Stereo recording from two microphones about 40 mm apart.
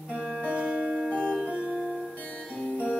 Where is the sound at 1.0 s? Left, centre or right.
Left.